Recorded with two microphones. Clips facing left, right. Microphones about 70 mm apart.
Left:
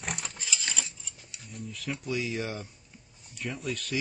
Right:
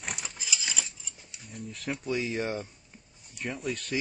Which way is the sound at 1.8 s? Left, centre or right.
Right.